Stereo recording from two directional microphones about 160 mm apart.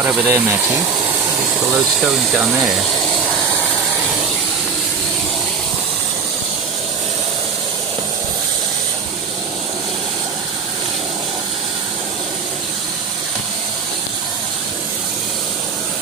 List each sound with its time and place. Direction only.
0.0 s speech: 15° right (ahead or behind)
1.7 s speech: 5° right (ahead or behind)